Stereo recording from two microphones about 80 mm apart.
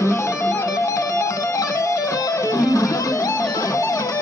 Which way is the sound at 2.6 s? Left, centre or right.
Left.